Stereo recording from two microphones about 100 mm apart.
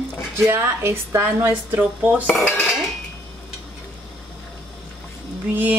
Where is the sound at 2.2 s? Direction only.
20° left (ahead or behind).